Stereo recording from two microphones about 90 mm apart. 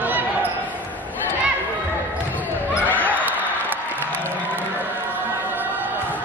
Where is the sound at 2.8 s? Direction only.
20° left (ahead or behind).